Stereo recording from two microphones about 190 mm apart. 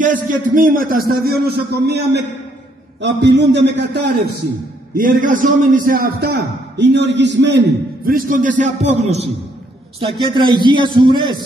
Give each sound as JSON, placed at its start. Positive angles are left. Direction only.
{"t": 0.0, "sound": "a man's voice", "side_deg": -45}
{"t": 4.9, "sound": "a man's voice", "side_deg": -45}
{"t": 10.2, "sound": "speech", "side_deg": -25}